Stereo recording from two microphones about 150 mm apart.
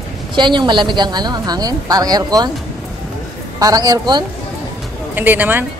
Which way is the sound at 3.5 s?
25° right (ahead or behind).